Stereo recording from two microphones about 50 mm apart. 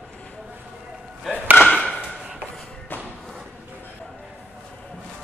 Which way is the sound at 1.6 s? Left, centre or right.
Centre.